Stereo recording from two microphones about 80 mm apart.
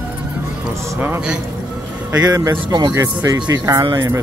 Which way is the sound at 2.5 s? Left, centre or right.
Right.